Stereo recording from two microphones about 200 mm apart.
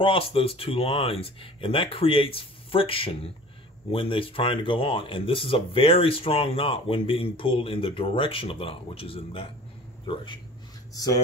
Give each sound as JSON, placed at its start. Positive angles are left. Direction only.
{"t": 0.0, "sound": "speech", "side_deg": 25}